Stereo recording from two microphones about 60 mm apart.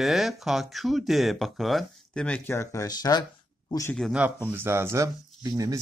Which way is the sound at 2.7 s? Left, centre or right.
Left.